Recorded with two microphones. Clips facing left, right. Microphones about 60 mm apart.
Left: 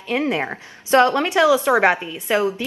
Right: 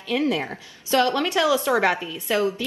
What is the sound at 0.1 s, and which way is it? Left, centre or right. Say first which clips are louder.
A woman's voice: left 2 dB; left.